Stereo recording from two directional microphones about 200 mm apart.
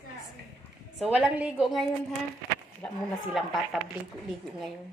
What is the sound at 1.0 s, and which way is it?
Speech, 5° right (ahead or behind).